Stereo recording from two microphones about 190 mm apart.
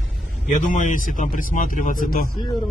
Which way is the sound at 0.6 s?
45° left (ahead or behind).